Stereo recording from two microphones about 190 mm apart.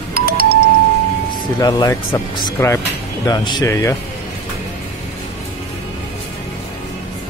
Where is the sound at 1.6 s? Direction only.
20° left (ahead or behind).